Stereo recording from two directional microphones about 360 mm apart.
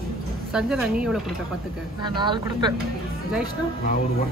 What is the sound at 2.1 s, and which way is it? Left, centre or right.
Speech, centre.